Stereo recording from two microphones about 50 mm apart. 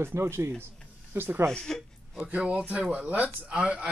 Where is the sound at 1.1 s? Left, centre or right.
Right.